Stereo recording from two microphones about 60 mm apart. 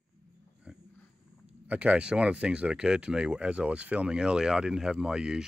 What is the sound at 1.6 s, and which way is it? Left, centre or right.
Speech, right.